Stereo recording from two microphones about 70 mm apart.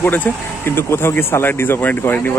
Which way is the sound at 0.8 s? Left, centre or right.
Left.